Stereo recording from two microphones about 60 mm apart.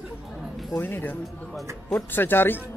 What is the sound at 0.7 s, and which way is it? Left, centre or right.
Speech, left.